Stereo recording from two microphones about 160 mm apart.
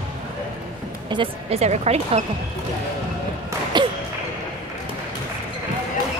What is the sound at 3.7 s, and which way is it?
Basketball bounce, 30° right (ahead or behind).